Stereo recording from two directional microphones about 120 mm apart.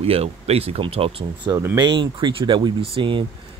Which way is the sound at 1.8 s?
40° right (ahead or behind).